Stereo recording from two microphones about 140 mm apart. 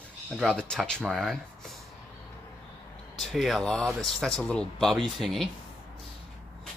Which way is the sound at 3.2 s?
Centre (ahead or behind).